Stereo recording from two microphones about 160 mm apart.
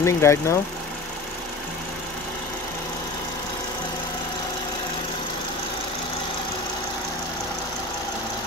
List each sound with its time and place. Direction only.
0.0 s speech: 15° left (ahead or behind)